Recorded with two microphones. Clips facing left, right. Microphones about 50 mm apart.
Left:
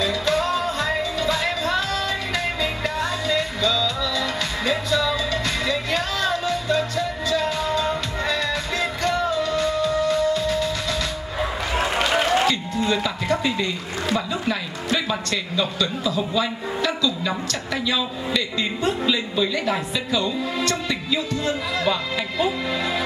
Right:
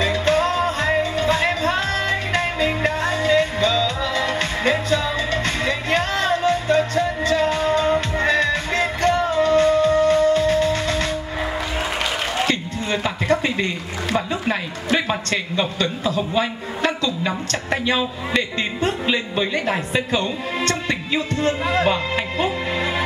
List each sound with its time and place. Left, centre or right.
0.0 s music: right
12.4 s a man's voice: right